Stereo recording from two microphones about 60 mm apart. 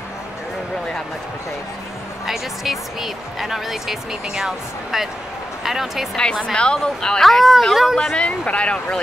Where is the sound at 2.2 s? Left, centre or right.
Centre.